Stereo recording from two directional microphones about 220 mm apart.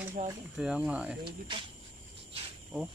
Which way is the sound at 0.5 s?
5° right (ahead or behind).